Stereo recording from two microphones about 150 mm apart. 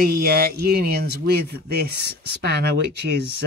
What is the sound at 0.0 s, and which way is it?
Speech, 90° right.